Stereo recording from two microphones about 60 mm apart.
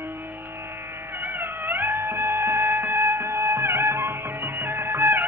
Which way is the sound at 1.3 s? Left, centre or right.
Right.